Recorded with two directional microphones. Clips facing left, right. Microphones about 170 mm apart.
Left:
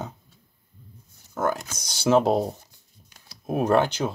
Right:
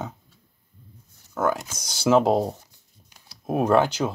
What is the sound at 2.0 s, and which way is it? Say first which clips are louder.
Speech: right 1 dB; centre (ahead or behind).